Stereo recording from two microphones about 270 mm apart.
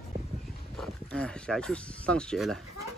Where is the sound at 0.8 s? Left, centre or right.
Centre.